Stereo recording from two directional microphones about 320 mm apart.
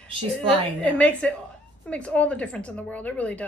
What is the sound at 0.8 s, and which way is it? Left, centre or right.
A woman's voice, centre.